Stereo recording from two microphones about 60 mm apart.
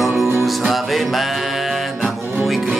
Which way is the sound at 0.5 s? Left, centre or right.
Centre.